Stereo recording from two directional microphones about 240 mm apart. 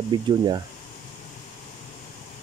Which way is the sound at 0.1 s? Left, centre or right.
Centre.